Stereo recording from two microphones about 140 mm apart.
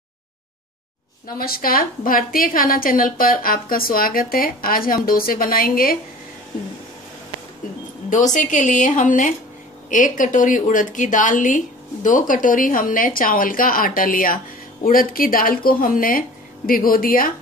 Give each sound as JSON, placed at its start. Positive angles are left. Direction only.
{"t": 1.2, "sound": "a woman's voice", "side_deg": 90}
{"t": 8.1, "sound": "a woman's voice", "side_deg": 65}